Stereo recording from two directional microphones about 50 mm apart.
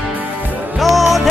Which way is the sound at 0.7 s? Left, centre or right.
Centre.